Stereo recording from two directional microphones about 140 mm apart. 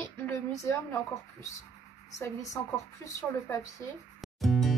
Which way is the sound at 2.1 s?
25° left (ahead or behind).